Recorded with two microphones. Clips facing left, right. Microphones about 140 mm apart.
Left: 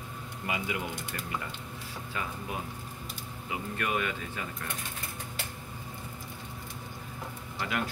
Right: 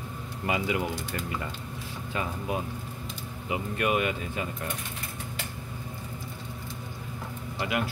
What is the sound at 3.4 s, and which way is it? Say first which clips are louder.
Speech: right 6 dB; 20° right (ahead or behind).